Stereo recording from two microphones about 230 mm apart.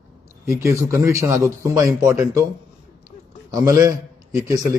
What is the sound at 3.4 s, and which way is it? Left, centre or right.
Speech, centre.